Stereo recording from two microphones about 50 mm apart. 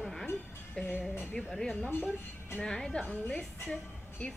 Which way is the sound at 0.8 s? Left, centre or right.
Left.